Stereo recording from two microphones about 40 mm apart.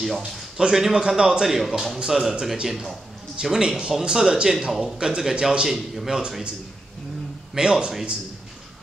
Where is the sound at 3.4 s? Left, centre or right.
Centre.